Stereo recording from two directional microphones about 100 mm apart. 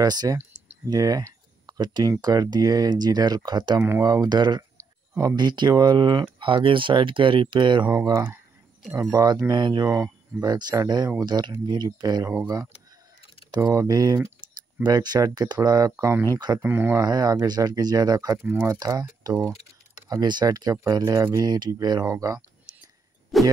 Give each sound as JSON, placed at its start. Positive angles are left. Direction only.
{"t": 0.0, "sound": "speech", "side_deg": -40}
{"t": 4.7, "sound": "a sound", "side_deg": -30}
{"t": 5.3, "sound": "speech", "side_deg": -45}
{"t": 7.9, "sound": "speech", "side_deg": -40}
{"t": 9.8, "sound": "speech", "side_deg": -30}
{"t": 10.4, "sound": "speech", "side_deg": -45}
{"t": 13.5, "sound": "speech", "side_deg": -35}
{"t": 16.6, "sound": "speech", "side_deg": -20}
{"t": 17.0, "sound": "speech", "side_deg": -40}
{"t": 21.5, "sound": "speech", "side_deg": -45}
{"t": 22.0, "sound": "speech", "side_deg": -30}
{"t": 23.3, "sound": "music", "side_deg": 0}